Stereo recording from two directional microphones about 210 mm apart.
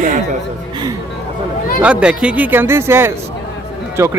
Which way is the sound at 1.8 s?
5° right (ahead or behind).